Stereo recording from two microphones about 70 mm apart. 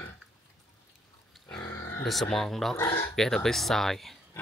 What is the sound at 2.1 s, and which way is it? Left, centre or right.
Speech, centre.